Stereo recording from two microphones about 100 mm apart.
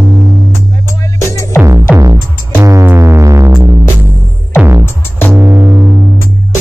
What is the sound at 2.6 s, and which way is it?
Music, 30° right (ahead or behind).